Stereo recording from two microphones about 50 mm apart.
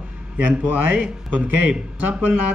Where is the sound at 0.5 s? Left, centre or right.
Right.